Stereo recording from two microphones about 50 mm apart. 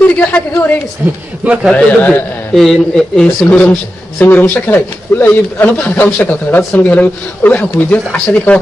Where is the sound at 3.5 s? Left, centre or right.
Left.